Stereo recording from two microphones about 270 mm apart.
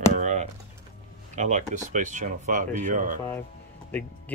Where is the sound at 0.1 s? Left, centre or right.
Right.